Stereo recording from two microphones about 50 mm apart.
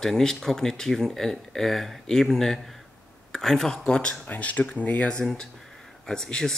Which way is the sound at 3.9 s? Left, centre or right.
Left.